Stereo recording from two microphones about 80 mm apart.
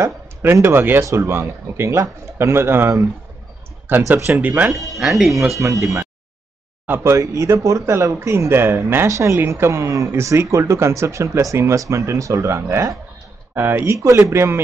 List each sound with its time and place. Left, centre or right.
0.0 s speech: right
4.7 s speech: centre
5.6 s speech: right
13.6 s speech: right
13.9 s speech: right